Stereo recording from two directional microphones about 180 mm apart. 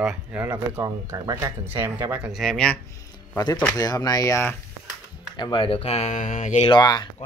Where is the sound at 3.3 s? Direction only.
20° left (ahead or behind).